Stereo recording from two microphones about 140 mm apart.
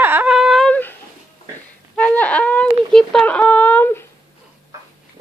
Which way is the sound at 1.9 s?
10° left (ahead or behind).